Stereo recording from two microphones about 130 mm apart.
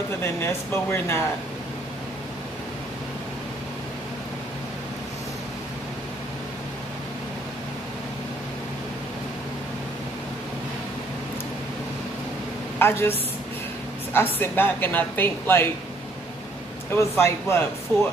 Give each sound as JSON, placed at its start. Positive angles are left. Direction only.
{"t": 0.2, "sound": "speech", "side_deg": 20}
{"t": 12.7, "sound": "a woman's voice", "side_deg": 20}
{"t": 16.9, "sound": "speech", "side_deg": 20}